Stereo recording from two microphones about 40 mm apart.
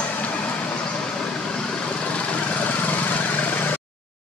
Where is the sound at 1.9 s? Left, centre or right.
Left.